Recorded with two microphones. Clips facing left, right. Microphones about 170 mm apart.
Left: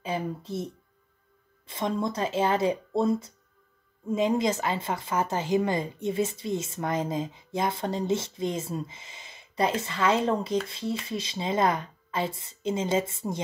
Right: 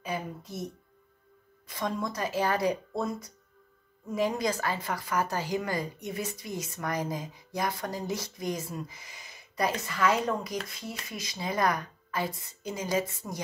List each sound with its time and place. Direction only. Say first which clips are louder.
0.0 s speech: left 4 dB; 30° left (ahead or behind)
1.7 s speech: left 4 dB; 25° left (ahead or behind)